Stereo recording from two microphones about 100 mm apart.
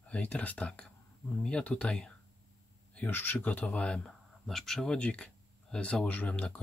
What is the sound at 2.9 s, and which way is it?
Speech, 20° left (ahead or behind).